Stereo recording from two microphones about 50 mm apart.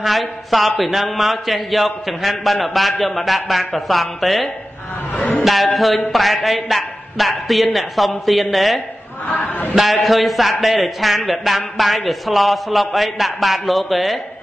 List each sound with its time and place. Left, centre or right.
0.0 s a man's voice: centre
9.3 s a man's voice: left
9.8 s a man's voice: centre